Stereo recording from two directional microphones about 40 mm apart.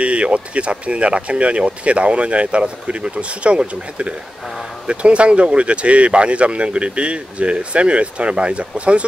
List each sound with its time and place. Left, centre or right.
0.0 s speech: right